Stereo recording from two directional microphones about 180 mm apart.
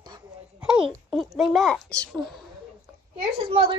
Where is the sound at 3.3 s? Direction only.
30° right (ahead or behind).